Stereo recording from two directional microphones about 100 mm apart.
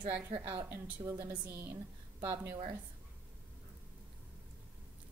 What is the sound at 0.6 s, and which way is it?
Speech, 15° right (ahead or behind).